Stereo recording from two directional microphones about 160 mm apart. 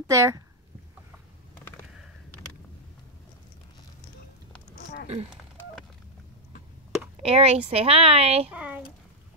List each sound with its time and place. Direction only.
0.0 s speech: 20° right (ahead or behind)
5.0 s speech: 40° right (ahead or behind)
7.2 s speech: 40° right (ahead or behind)
8.5 s a child's voice: 10° right (ahead or behind)